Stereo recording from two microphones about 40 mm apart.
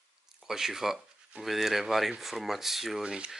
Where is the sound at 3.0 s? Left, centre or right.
Right.